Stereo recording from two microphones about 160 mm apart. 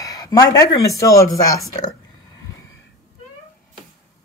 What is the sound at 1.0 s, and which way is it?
Speech, 20° left (ahead or behind).